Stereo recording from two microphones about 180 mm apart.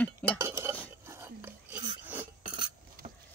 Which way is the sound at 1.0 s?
15° right (ahead or behind).